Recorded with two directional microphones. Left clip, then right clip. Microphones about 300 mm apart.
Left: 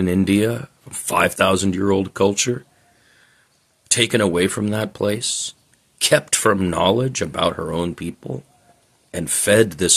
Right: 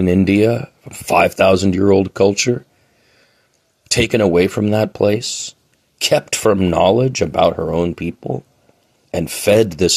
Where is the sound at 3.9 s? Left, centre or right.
Centre.